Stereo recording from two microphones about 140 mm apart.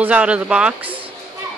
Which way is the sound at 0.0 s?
10° right (ahead or behind).